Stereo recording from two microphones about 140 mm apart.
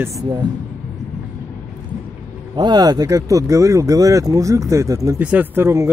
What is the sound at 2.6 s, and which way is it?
Speech, 30° right (ahead or behind).